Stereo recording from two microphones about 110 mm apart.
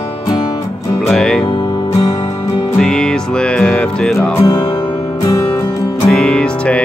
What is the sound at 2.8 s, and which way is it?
Music, 5° left (ahead or behind).